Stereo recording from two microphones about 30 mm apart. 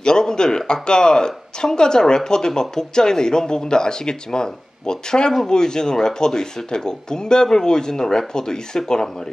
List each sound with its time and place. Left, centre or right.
0.0 s speech: left